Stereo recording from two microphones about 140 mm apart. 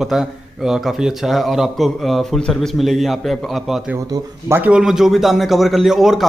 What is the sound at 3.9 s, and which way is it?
A man's voice, 20° right (ahead or behind).